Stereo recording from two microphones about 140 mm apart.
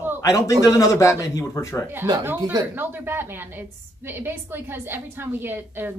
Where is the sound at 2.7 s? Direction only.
15° right (ahead or behind).